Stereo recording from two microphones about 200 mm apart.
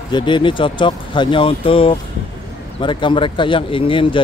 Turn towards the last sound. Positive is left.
turn(degrees=25)  # may be behind; listen again after turning